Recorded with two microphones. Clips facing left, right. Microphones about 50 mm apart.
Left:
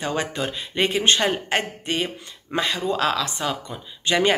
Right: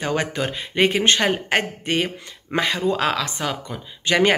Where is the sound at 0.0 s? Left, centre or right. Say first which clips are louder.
Right 2 dB; right.